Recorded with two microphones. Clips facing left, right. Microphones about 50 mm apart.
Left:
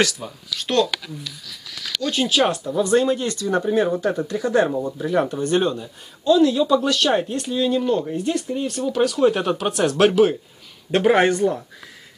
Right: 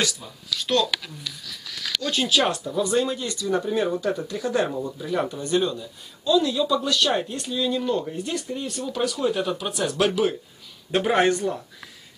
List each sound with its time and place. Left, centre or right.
0.2 s a man's voice: left
2.0 s a man's voice: left
8.9 s a man's voice: left
9.7 s a man's voice: left
11.2 s a man's voice: left